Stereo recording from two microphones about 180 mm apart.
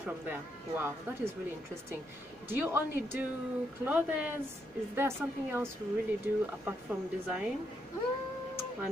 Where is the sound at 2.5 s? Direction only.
10° right (ahead or behind).